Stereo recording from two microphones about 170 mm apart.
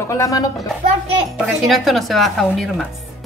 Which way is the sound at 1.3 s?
Centre (ahead or behind).